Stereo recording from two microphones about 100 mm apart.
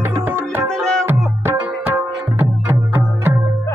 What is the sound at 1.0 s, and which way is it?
Music, 20° right (ahead or behind).